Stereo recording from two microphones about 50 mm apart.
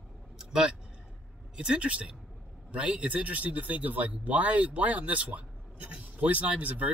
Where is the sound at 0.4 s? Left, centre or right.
Centre.